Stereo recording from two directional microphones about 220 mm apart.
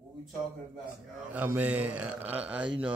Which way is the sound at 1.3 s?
10° right (ahead or behind).